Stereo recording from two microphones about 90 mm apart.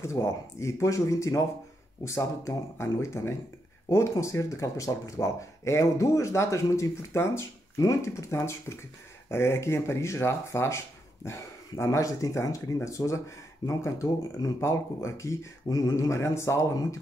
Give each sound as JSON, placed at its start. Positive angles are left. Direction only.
{"t": 0.0, "sound": "speech", "side_deg": 35}